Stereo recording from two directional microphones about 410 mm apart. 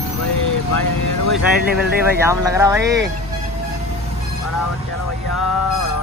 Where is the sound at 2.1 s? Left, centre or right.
Centre.